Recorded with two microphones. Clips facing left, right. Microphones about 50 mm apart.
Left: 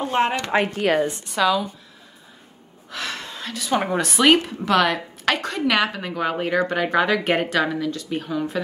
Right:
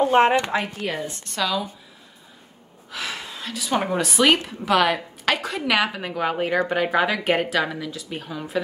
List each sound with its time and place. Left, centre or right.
0.0 s speech: centre
0.7 s a woman's voice: left
1.1 s a woman's voice: centre
2.9 s speech: centre